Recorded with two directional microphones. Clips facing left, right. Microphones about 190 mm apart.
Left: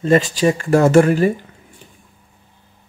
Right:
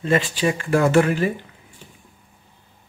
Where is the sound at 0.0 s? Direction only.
40° left (ahead or behind).